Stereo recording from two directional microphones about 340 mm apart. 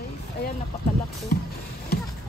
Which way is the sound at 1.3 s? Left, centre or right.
Left.